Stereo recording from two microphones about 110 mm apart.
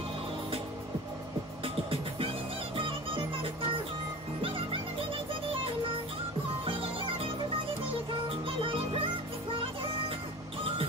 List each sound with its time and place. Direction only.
1.6 s music: 55° right (ahead or behind)
6.6 s music: 55° right (ahead or behind)
8.3 s music: 55° right (ahead or behind)